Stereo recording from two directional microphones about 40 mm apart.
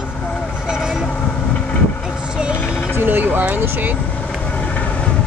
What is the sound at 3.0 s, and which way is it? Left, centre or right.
Speech, right.